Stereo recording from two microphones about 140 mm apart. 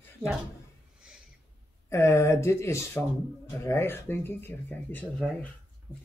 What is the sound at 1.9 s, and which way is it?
Speech, 20° left (ahead or behind).